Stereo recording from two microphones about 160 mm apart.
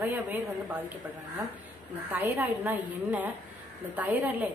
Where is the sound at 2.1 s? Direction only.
10° right (ahead or behind).